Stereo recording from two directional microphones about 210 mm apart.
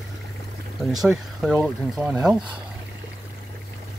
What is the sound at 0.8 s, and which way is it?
Speech, centre (ahead or behind).